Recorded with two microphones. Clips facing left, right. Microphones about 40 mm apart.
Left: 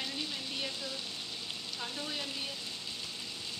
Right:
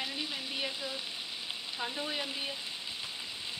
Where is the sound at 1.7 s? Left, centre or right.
Centre.